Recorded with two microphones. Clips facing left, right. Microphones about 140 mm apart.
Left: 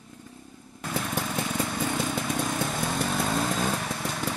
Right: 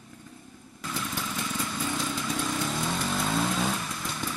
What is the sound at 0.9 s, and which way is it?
Motorcycle, 55° left (ahead or behind).